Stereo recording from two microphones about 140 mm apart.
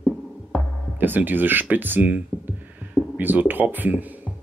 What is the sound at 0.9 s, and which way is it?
Speech, 15° right (ahead or behind).